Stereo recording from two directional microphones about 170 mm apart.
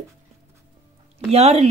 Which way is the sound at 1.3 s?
40° right (ahead or behind).